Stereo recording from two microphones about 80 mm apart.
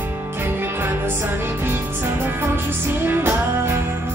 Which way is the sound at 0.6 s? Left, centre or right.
Right.